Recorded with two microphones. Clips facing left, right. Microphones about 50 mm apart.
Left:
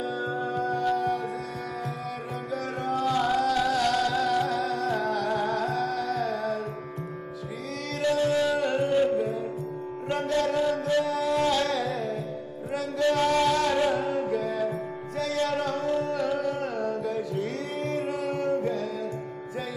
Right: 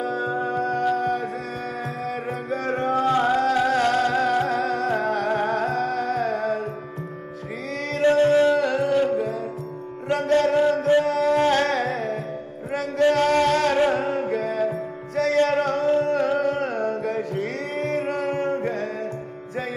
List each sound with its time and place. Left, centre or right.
0.0 s music: right
2.5 s music: right
8.0 s music: right
8.5 s music: right
10.1 s music: right